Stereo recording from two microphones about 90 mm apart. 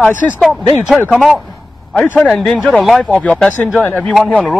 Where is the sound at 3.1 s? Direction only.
15° left (ahead or behind).